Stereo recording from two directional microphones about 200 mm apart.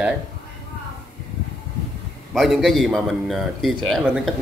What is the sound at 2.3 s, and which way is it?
A man's voice, centre (ahead or behind).